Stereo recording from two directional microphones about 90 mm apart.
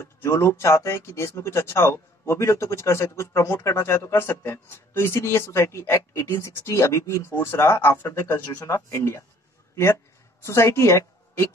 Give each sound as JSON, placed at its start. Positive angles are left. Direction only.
{"t": 0.0, "sound": "speech", "side_deg": 30}
{"t": 10.4, "sound": "a woman's voice", "side_deg": 30}